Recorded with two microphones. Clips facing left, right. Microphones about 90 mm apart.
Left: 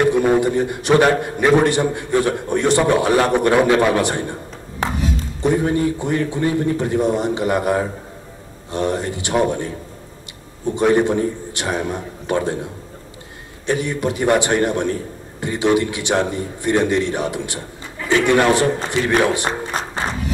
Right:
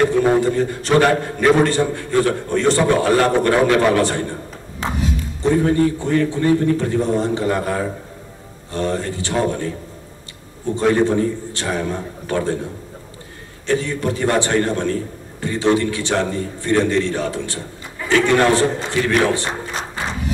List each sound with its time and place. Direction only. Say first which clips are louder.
0.0 s a man's voice: even; 15° left (ahead or behind)
5.4 s a man's voice: right 2 dB; 15° left (ahead or behind)
10.7 s a man's voice: even; 15° left (ahead or behind)
13.7 s a man's voice: even; 15° left (ahead or behind)